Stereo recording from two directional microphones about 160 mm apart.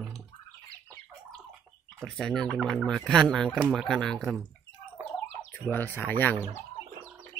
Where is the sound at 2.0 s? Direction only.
Centre (ahead or behind).